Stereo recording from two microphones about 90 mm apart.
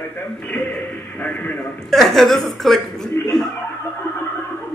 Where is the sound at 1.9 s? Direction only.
5° left (ahead or behind).